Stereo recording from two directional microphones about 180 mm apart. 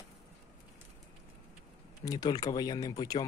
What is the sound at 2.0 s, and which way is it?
Speech, 20° left (ahead or behind).